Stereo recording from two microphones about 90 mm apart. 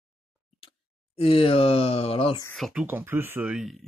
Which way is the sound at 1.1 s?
90° left.